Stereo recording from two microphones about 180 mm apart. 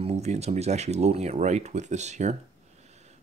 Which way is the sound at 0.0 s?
35° right (ahead or behind).